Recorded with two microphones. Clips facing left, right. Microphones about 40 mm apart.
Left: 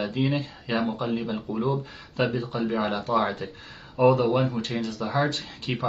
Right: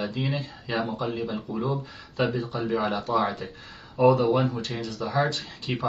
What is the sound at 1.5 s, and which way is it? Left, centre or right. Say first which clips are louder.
Speech: left 3 dB; centre.